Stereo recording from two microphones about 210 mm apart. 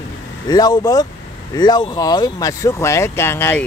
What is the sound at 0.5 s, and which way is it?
Speech, 20° left (ahead or behind).